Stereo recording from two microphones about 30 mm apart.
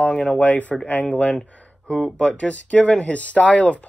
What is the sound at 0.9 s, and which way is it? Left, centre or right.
Speech, left.